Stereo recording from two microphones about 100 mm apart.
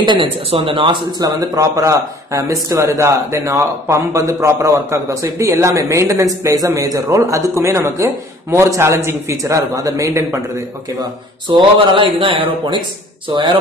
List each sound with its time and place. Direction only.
0.0 s speech: 50° right (ahead or behind)
0.5 s speech: 65° right (ahead or behind)
1.2 s a man's voice: 35° right (ahead or behind)
11.9 s speech: 60° right (ahead or behind)
13.3 s speech: 50° right (ahead or behind)